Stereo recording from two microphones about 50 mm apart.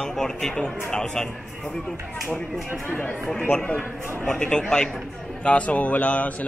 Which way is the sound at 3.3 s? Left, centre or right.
Centre.